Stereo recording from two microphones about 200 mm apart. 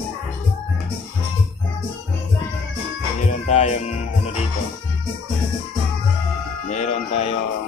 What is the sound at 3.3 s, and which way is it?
Music, 35° left (ahead or behind).